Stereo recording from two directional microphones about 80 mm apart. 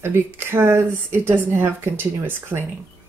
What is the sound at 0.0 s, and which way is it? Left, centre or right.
Speech, right.